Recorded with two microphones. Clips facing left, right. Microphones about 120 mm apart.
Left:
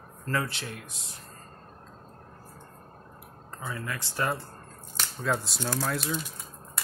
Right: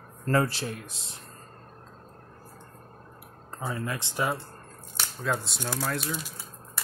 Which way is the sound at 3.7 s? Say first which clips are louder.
Right 3 dB; 25° right (ahead or behind).